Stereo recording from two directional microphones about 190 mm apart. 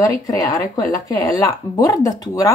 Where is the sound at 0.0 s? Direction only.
20° left (ahead or behind).